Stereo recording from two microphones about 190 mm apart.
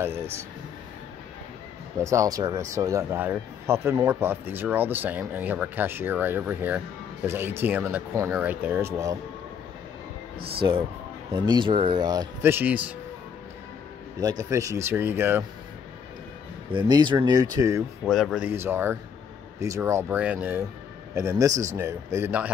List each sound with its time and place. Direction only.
0.0 s speech: 15° right (ahead or behind)
2.0 s speech: 15° right (ahead or behind)
11.3 s speech: 25° right (ahead or behind); by 12.9 s 10° right (ahead or behind)
14.4 s speech: 15° right (ahead or behind)
16.7 s speech: 25° right (ahead or behind)
18.0 s speech: centre (ahead or behind)